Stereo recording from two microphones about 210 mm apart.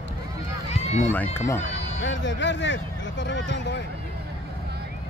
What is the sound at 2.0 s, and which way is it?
Speech, 60° left (ahead or behind).